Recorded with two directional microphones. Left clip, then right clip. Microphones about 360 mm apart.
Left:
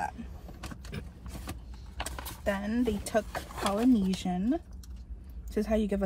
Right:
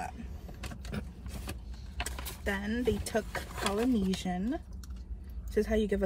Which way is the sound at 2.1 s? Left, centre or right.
Centre.